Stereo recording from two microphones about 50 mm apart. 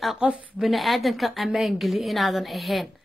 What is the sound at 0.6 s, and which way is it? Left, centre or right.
A woman's voice, centre.